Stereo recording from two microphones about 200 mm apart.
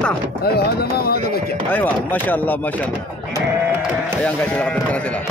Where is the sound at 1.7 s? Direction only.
10° left (ahead or behind).